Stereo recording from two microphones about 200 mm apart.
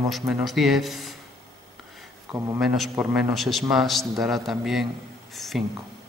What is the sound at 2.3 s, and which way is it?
A man's voice, 5° right (ahead or behind).